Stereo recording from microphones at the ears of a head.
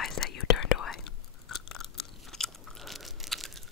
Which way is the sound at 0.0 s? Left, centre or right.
Left.